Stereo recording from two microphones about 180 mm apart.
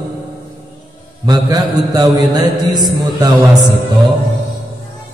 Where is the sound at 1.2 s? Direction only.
20° right (ahead or behind).